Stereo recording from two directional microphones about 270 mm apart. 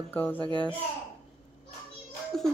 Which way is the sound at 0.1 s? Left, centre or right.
Centre.